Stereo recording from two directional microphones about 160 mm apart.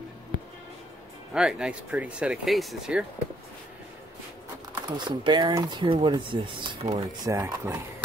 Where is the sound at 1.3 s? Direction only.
5° right (ahead or behind).